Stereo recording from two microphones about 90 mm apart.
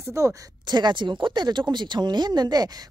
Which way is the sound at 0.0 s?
35° right (ahead or behind).